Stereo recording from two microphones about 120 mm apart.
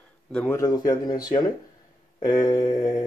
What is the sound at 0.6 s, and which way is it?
Speech, 35° left (ahead or behind).